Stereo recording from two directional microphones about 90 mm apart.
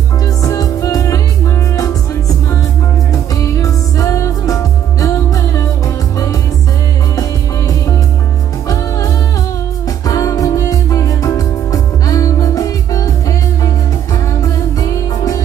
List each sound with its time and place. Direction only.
0.4 s music: 40° left (ahead or behind)
3.3 s music: 40° left (ahead or behind)
10.0 s music: 40° left (ahead or behind)
14.4 s music: 40° left (ahead or behind)